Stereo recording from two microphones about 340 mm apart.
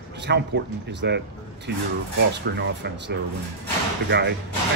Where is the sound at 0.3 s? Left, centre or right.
Right.